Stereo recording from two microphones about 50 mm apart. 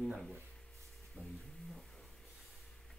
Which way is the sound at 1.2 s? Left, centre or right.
Left.